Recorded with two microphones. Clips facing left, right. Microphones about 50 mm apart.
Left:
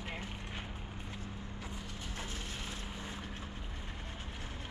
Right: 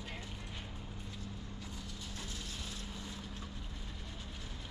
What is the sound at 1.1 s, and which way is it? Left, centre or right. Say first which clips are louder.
Vehicle: left 2 dB; left.